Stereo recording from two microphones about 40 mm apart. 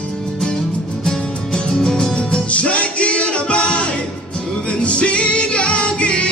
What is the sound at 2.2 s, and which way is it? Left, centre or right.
Music, left.